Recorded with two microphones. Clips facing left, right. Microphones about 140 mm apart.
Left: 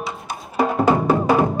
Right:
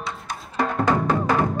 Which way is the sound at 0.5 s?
10° left (ahead or behind).